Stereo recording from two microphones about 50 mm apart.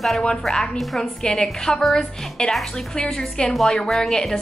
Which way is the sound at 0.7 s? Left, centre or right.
Centre.